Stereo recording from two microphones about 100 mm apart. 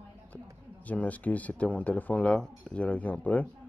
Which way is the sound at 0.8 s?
15° left (ahead or behind).